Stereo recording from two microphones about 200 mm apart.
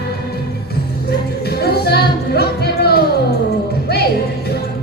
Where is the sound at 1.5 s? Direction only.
50° left (ahead or behind).